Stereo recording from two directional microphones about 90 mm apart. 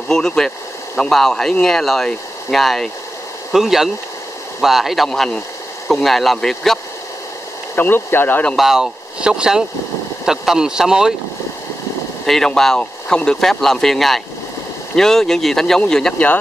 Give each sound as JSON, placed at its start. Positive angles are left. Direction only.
{"t": 0.1, "sound": "speech", "side_deg": 5}
{"t": 7.7, "sound": "speech", "side_deg": 20}
{"t": 8.5, "sound": "speech", "side_deg": 0}
{"t": 12.3, "sound": "speech", "side_deg": 5}